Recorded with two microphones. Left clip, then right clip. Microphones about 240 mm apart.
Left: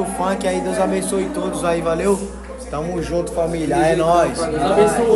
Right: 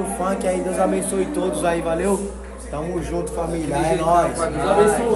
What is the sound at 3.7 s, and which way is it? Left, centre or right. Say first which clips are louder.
Speech: left 3 dB; centre.